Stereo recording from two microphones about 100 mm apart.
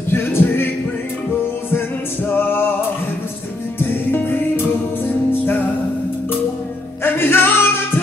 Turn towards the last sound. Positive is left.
turn(degrees=20)  # may be behind; listen again after turning